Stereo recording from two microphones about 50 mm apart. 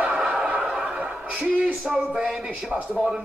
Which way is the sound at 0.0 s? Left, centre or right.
Centre.